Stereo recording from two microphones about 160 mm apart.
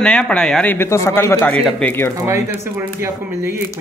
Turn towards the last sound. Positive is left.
turn(degrees=-15)  # may be behind; listen again after turning